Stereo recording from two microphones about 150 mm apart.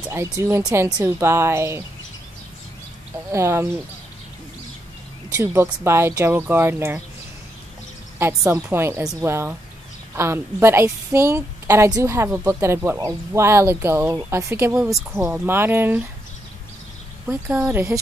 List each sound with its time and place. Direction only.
0.1 s a woman's voice: 20° right (ahead or behind)
3.3 s a woman's voice: 20° right (ahead or behind)
5.3 s a woman's voice: 20° right (ahead or behind)
8.2 s a woman's voice: 20° right (ahead or behind)
17.3 s a woman's voice: 15° right (ahead or behind)